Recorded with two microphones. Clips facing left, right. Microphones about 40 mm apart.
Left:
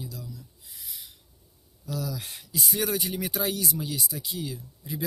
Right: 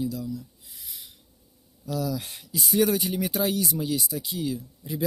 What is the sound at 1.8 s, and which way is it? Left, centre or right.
Speech, right.